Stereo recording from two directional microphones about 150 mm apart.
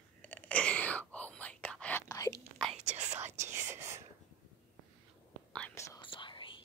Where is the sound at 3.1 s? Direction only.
50° right (ahead or behind).